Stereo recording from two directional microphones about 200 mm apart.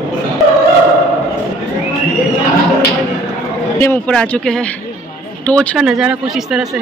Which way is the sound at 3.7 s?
10° left (ahead or behind).